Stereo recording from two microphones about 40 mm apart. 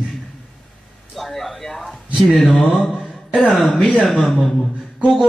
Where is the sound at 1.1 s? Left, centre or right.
Centre.